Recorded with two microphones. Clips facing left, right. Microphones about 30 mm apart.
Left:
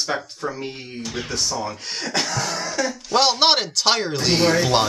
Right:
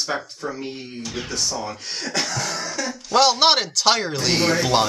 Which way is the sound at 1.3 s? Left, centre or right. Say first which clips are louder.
Left 1 dB; left.